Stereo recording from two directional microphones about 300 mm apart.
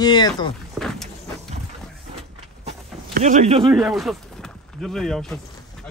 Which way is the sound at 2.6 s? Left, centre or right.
Right.